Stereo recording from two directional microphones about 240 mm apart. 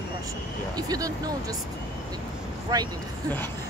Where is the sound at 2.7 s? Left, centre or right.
Centre.